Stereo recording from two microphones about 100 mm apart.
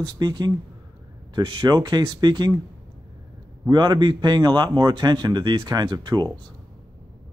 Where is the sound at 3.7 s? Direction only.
50° right (ahead or behind).